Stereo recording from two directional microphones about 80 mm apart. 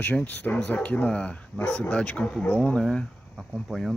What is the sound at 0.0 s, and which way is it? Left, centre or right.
Speech, left.